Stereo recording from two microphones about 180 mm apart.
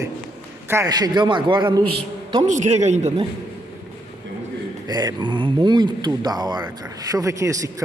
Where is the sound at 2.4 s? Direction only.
40° right (ahead or behind).